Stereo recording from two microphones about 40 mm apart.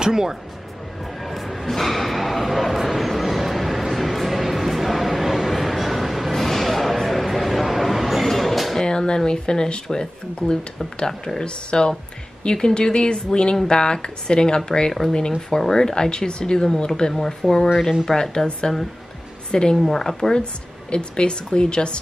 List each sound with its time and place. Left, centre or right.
0.0 s speech: centre
1.2 s bow-wow: centre
8.8 s speech: left
11.4 s speech: left
14.9 s speech: centre
17.1 s speech: centre
20.9 s speech: left